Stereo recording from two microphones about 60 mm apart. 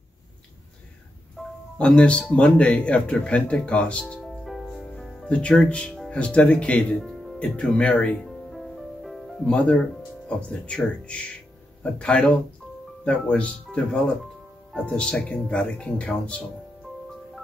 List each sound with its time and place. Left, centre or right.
1.4 s music: centre
1.8 s speech: centre
4.2 s music: centre
5.3 s speech: centre
7.0 s music: centre
7.3 s speech: left
8.2 s music: centre
9.5 s speech: centre
14.9 s speech: centre
15.6 s speech: centre